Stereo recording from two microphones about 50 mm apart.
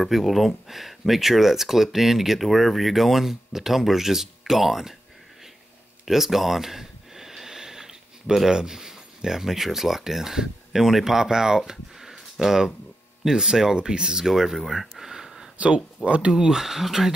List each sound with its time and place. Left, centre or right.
0.0 s speech: centre
6.0 s speech: centre
15.5 s speech: right
16.3 s speech: centre